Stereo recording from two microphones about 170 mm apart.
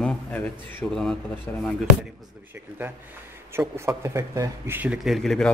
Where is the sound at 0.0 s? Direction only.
10° left (ahead or behind).